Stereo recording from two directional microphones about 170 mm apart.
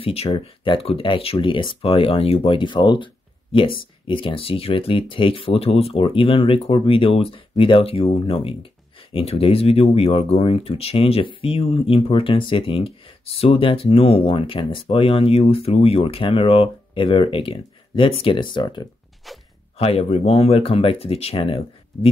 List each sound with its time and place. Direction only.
0.0 s speech: 35° left (ahead or behind)
19.2 s speech: centre (ahead or behind)
19.8 s speech: 35° left (ahead or behind)